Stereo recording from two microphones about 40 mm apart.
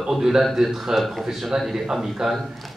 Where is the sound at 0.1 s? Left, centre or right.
Centre.